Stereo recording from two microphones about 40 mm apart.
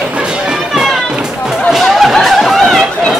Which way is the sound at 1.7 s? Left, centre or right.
Centre.